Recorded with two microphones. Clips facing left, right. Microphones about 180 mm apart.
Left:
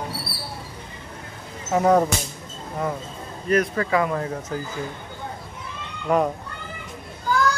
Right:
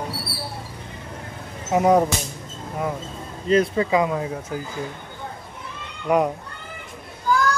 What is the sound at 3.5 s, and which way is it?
Speech, 20° right (ahead or behind).